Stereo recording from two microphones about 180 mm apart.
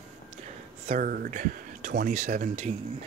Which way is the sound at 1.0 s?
55° right (ahead or behind).